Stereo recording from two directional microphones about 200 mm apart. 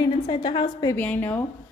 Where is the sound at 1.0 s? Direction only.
10° left (ahead or behind).